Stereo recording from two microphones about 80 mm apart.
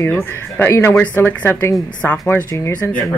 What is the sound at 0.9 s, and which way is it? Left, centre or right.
Speech, centre.